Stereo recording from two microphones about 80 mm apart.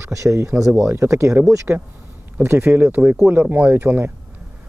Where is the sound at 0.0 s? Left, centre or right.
Right.